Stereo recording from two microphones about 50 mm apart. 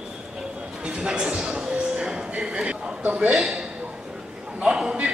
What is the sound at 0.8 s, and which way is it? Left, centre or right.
Speech, centre.